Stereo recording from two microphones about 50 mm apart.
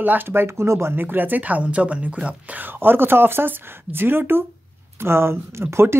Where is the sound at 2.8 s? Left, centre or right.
Right.